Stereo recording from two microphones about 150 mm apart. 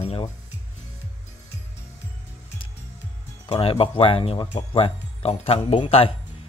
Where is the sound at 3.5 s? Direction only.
40° left (ahead or behind).